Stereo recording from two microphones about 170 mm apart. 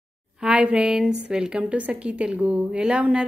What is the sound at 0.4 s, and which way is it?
A woman's voice, 10° right (ahead or behind).